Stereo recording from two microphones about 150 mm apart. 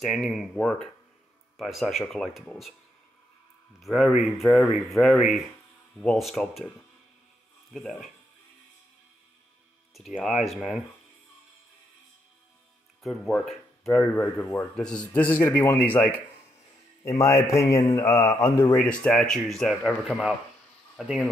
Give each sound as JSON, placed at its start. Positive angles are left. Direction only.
{"t": 0.0, "sound": "speech", "side_deg": 0}
{"t": 3.8, "sound": "speech", "side_deg": 0}
{"t": 7.7, "sound": "speech", "side_deg": 0}
{"t": 9.9, "sound": "speech", "side_deg": 0}
{"t": 13.1, "sound": "speech", "side_deg": 0}
{"t": 14.1, "sound": "a man's voice", "side_deg": 15}